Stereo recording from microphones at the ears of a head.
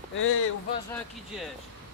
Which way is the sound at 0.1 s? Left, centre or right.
Left.